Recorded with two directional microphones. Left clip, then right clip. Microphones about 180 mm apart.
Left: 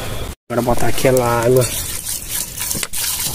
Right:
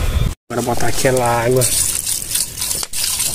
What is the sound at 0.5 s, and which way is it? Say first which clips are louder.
Speech: left 2 dB; 25° left (ahead or behind).